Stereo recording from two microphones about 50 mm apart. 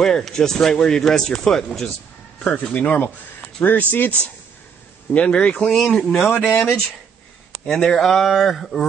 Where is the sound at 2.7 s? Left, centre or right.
Left.